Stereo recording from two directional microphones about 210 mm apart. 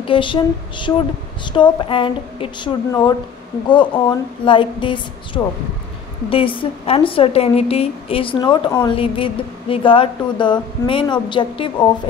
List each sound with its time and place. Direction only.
0.0 s a woman's voice: 25° left (ahead or behind)